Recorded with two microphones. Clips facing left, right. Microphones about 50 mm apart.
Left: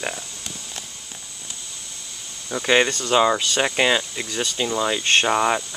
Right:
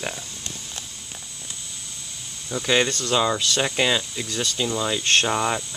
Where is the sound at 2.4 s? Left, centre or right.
Centre.